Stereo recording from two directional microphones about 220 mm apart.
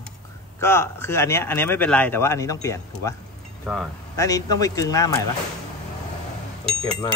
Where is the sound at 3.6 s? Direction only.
Centre (ahead or behind).